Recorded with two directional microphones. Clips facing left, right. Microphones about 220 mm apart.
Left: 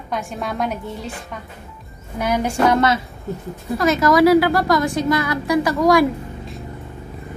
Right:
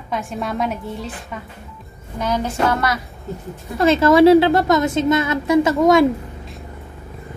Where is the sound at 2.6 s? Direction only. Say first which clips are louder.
Left 5 dB; 25° left (ahead or behind).